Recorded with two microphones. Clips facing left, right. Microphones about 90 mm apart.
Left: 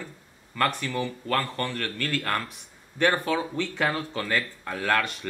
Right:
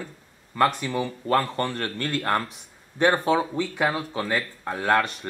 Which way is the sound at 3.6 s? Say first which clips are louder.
Right 2 dB; 10° right (ahead or behind).